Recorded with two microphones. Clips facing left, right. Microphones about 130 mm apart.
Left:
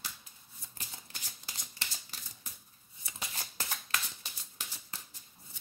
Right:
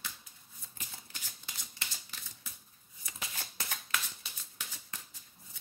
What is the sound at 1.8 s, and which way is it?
Typewriter, 35° left (ahead or behind).